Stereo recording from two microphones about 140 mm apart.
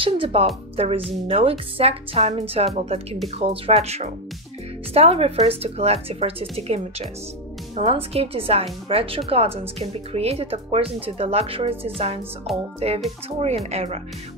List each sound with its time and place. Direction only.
0.0 s speech: 40° right (ahead or behind)